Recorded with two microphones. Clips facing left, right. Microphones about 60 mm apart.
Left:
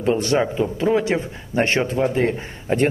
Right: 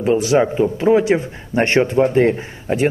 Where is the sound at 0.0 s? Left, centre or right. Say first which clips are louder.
Right 4 dB; centre.